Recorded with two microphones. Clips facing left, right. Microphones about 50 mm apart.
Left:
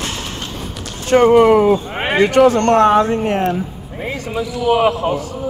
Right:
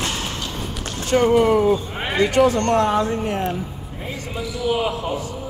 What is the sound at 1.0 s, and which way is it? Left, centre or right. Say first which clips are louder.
Speech: left 6 dB; left.